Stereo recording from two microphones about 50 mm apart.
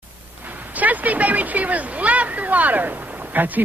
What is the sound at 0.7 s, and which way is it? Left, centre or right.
Speech, right.